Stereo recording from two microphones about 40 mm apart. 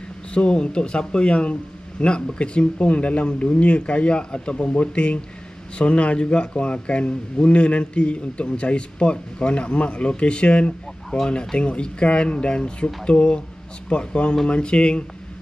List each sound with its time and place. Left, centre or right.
0.3 s speech: left